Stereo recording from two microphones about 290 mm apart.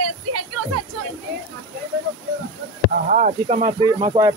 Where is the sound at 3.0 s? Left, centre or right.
Right.